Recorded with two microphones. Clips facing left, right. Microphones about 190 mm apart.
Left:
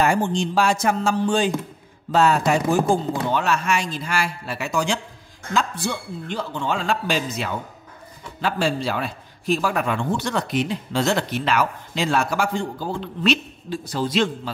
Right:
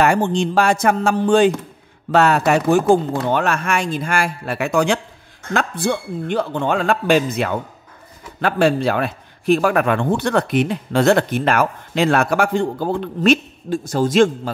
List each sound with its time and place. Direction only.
0.0 s a man's voice: 65° right (ahead or behind)
3.3 s a man's voice: 55° right (ahead or behind)